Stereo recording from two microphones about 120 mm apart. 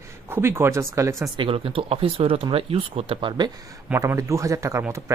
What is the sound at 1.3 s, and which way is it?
Speech, 50° right (ahead or behind).